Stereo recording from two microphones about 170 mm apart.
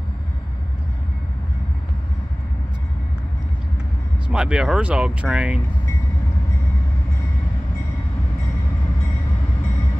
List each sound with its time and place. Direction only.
4.3 s speech: 5° right (ahead or behind)